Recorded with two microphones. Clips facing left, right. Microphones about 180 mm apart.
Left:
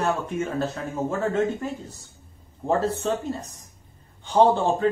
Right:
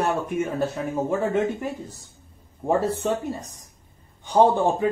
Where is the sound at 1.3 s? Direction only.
15° right (ahead or behind).